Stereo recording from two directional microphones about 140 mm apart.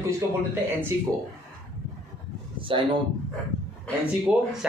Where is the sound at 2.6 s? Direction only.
35° right (ahead or behind).